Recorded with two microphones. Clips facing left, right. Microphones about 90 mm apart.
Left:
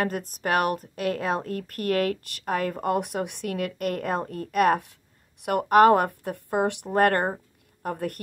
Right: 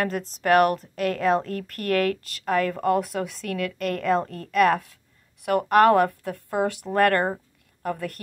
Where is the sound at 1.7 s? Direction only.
20° left (ahead or behind).